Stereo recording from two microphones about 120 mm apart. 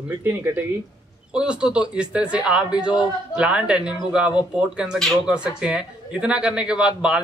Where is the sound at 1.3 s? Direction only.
10° right (ahead or behind).